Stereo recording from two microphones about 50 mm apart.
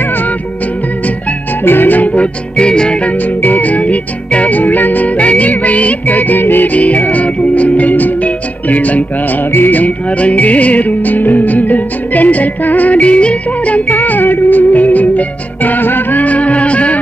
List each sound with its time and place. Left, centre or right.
0.0 s music: left
1.6 s music: left